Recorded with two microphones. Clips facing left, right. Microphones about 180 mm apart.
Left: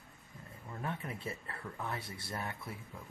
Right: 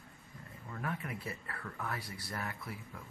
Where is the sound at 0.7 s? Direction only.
25° left (ahead or behind).